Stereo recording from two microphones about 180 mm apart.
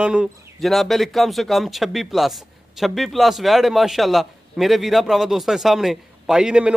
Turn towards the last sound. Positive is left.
turn(degrees=-5)  # may be behind; listen again after turning